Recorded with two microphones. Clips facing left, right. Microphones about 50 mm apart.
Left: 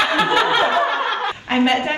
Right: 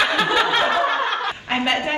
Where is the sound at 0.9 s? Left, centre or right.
Left.